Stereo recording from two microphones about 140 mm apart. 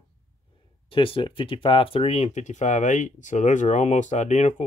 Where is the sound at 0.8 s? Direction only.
40° left (ahead or behind).